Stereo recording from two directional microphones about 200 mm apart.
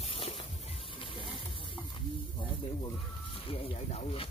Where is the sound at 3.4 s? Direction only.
30° left (ahead or behind).